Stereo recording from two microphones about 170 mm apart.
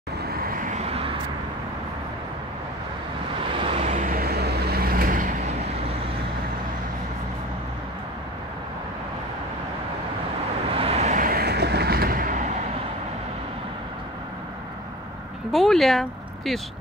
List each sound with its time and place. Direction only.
0.8 s vehicle: 35° right (ahead or behind)
3.6 s vehicle: 40° right (ahead or behind); by 5.3 s 55° right (ahead or behind)
10.8 s vehicle: 40° right (ahead or behind); by 12.4 s 55° right (ahead or behind)
15.5 s a sound: centre (ahead or behind)